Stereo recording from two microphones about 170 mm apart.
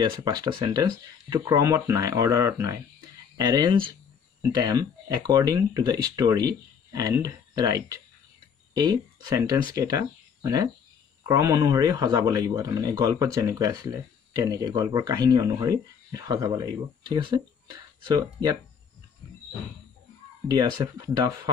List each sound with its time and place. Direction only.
0.0 s speech: 25° right (ahead or behind)
20.4 s speech: 25° right (ahead or behind)